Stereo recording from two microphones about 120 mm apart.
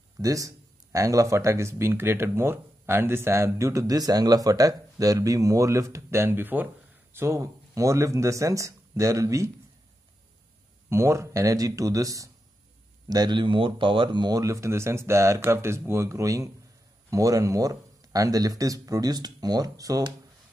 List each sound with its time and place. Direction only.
0.2 s speech: 30° right (ahead or behind)
10.9 s speech: 25° right (ahead or behind)